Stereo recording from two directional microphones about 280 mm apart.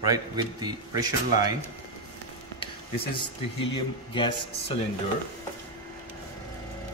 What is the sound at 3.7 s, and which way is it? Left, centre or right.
Speech, centre.